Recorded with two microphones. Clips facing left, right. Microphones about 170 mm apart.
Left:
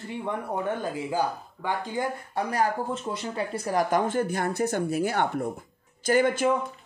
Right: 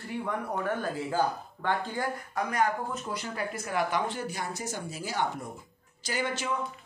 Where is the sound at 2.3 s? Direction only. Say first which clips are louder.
Left 1 dB; 35° left (ahead or behind); by 6.5 s 50° left (ahead or behind).